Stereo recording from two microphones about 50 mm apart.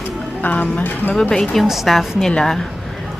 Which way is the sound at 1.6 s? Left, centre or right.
Centre.